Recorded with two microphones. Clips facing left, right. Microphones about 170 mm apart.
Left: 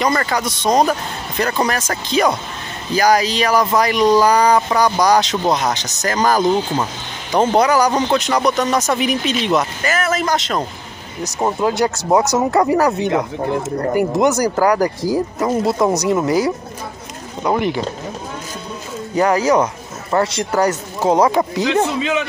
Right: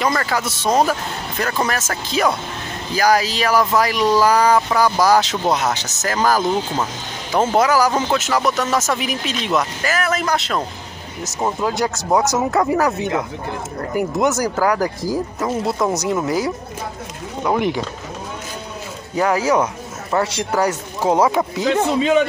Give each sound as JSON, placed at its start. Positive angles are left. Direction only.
{"t": 0.0, "sound": "speech", "side_deg": 0}
{"t": 19.1, "sound": "a man's voice", "side_deg": -5}
{"t": 22.0, "sound": "speech", "side_deg": -35}